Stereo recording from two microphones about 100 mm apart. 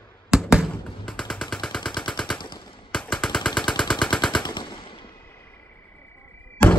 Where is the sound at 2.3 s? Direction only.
50° left (ahead or behind).